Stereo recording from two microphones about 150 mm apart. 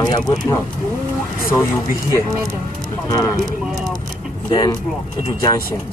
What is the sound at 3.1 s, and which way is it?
Speech, 25° left (ahead or behind).